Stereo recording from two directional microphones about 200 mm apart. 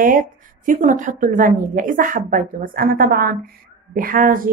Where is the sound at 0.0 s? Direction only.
45° right (ahead or behind).